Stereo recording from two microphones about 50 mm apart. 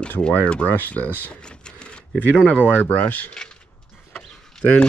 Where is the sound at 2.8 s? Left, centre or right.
Left.